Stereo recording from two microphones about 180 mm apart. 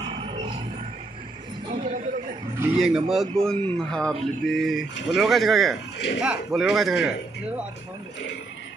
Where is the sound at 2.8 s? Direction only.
Centre (ahead or behind).